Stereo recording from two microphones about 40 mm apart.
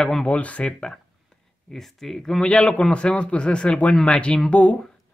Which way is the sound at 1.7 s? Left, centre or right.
Centre.